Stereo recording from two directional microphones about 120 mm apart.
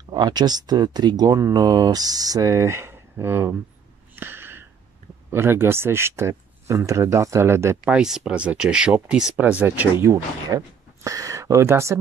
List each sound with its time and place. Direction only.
0.1 s speech: 35° right (ahead or behind); by 3.5 s 20° right (ahead or behind)
4.1 s a sound: 20° right (ahead or behind)
5.3 s speech: 20° right (ahead or behind)
7.8 s speech: 5° right (ahead or behind); by 12.0 s 25° right (ahead or behind)